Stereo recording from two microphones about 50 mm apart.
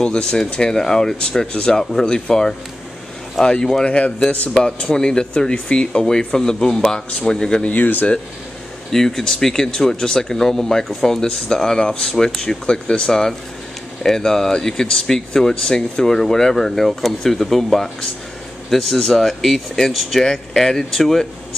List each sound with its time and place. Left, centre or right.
0.0 s speech: centre
7.7 s speech: left
8.9 s speech: centre
14.0 s speech: centre